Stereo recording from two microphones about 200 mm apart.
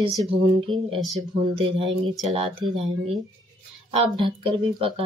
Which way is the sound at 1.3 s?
25° right (ahead or behind).